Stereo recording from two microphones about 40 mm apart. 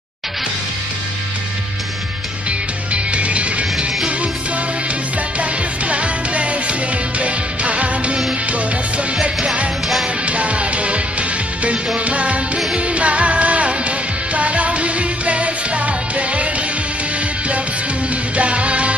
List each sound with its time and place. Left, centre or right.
2.9 s music: right
5.4 s music: right
18.3 s music: right